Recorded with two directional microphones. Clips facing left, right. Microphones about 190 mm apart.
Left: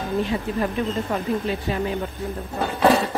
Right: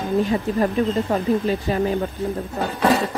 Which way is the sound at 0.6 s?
40° right (ahead or behind).